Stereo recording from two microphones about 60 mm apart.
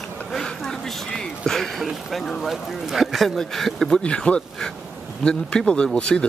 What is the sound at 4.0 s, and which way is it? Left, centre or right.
Speech, centre.